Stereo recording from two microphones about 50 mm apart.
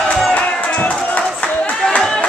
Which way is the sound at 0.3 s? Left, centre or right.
Left.